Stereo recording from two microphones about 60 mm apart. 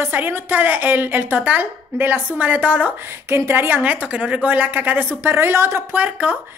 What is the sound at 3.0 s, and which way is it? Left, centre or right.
A woman's voice, right.